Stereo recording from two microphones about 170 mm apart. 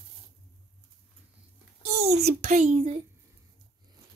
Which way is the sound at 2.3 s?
40° right (ahead or behind).